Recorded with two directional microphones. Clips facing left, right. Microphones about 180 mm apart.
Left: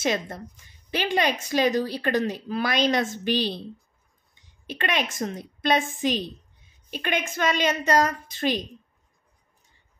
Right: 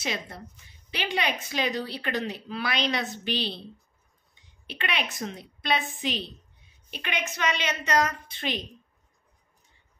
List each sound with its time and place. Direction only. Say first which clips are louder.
0.0 s a woman's voice: left 7 dB; 45° left (ahead or behind)
4.6 s a woman's voice: left 5 dB; 45° left (ahead or behind)